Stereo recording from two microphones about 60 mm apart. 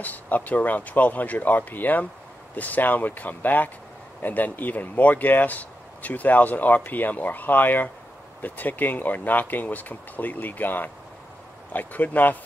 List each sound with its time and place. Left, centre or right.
0.0 s speech: left